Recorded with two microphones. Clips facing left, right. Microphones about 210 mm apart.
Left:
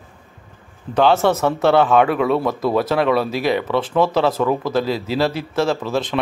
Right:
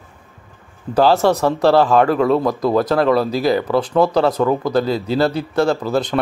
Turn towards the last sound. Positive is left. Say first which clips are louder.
# right 3 dB
turn(degrees=0)  # may be behind; listen again after turning